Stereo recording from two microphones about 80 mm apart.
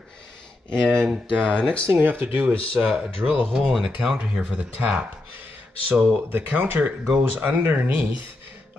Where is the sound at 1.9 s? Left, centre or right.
Right.